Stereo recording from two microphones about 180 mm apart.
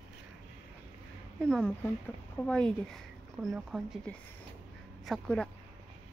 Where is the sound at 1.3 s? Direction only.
5° left (ahead or behind).